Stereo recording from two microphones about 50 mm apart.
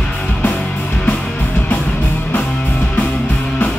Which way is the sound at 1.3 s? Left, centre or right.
Left.